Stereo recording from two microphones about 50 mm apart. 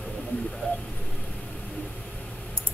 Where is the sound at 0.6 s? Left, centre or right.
Left.